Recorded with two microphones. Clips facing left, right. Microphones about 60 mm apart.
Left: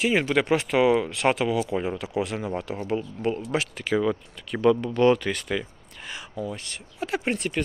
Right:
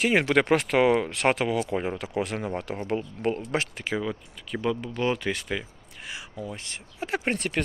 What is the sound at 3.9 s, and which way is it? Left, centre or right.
Speech, right.